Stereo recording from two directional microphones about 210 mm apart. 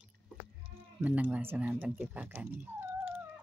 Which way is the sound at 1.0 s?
5° right (ahead or behind).